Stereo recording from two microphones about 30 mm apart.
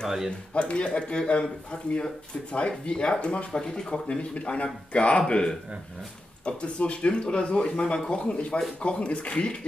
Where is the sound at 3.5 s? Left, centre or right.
Left.